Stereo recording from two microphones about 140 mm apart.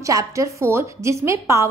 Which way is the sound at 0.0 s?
25° right (ahead or behind).